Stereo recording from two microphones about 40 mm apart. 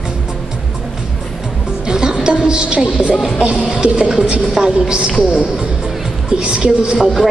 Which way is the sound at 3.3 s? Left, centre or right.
Right.